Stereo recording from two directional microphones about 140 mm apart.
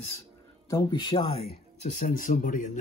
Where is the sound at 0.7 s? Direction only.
30° left (ahead or behind).